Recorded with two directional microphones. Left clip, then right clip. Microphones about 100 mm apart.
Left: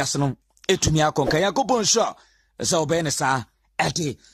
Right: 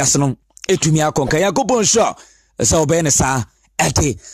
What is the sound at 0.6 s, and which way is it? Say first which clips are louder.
Speech: right 4 dB; 45° right (ahead or behind).